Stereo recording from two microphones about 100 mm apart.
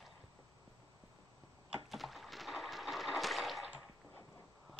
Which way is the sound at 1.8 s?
Centre (ahead or behind).